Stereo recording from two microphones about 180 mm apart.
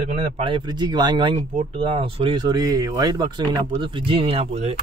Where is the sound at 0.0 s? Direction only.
35° right (ahead or behind).